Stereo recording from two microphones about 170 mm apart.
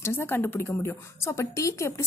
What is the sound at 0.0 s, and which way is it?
A woman's voice, 15° left (ahead or behind).